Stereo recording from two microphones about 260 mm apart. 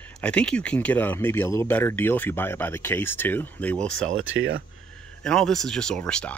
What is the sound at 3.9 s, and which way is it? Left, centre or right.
Speech, right.